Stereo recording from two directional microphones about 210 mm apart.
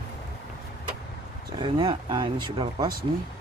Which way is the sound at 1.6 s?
20° right (ahead or behind).